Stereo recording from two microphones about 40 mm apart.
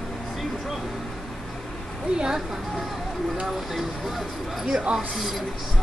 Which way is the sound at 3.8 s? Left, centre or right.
Centre.